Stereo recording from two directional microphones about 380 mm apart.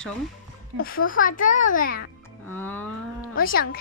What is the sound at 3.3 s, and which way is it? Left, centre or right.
Speech, left.